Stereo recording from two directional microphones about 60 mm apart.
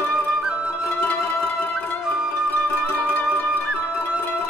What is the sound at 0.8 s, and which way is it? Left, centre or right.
Music, left.